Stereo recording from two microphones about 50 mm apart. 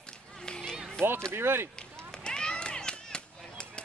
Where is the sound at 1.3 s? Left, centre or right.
Right.